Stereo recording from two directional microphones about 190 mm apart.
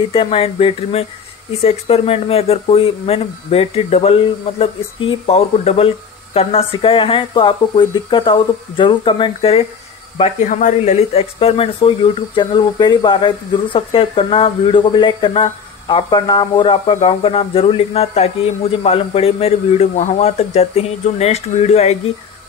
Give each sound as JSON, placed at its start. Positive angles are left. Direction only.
{"t": 0.1, "sound": "speech", "side_deg": 30}